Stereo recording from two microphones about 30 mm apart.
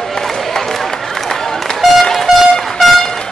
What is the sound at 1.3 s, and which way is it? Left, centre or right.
Run, centre.